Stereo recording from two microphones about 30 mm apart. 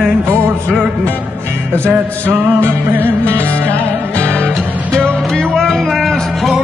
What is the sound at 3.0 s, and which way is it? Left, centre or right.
Music, left.